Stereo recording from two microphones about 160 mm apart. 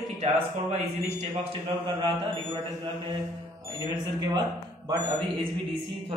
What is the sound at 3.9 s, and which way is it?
Speech, 25° right (ahead or behind).